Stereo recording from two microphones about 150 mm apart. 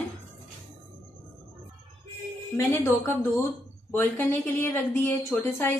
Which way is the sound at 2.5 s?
15° left (ahead or behind).